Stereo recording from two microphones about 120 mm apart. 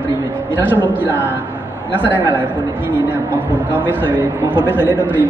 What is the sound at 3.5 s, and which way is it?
Speech, 15° right (ahead or behind).